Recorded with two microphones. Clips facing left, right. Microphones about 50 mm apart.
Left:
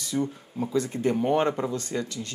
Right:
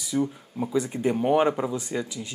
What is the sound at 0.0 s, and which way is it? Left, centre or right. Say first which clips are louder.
Speech: right 2 dB; centre.